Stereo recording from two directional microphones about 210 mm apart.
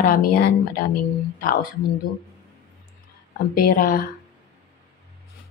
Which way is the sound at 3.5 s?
40° left (ahead or behind).